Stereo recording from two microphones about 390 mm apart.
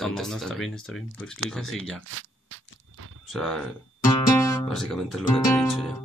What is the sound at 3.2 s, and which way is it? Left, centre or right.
Speech, centre.